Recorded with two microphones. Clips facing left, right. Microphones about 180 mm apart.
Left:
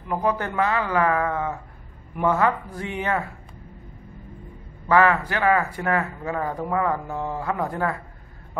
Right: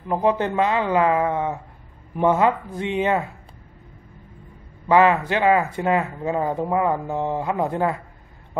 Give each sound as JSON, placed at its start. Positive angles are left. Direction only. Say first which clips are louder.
{"t": 0.1, "sound": "speech", "louder": "right 4 dB", "side_deg": -20}
{"t": 4.8, "sound": "speech", "louder": "right 2 dB", "side_deg": -20}